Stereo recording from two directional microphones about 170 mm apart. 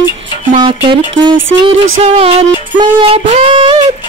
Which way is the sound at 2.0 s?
35° right (ahead or behind).